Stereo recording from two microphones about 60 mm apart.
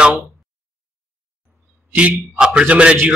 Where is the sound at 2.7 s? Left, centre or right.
Right.